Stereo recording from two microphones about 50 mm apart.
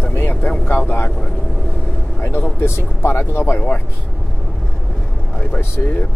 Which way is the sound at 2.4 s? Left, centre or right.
Left.